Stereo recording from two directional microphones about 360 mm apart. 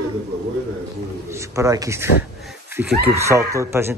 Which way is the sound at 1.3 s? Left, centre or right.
Centre.